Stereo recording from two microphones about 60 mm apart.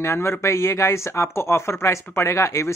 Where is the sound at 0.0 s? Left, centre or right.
Left.